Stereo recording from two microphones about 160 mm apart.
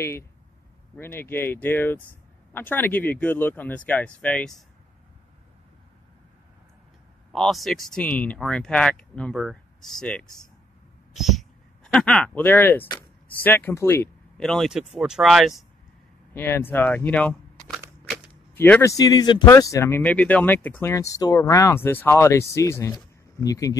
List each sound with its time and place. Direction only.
0.9 s speech: 15° left (ahead or behind)
7.3 s speech: centre (ahead or behind)
14.4 s speech: centre (ahead or behind)
16.3 s speech: 15° left (ahead or behind)